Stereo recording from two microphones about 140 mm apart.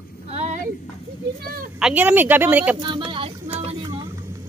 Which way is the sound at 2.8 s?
35° right (ahead or behind).